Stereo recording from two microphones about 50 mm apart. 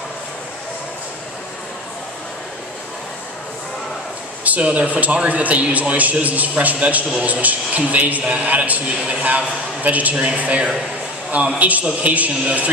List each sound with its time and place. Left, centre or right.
4.5 s a man's voice: right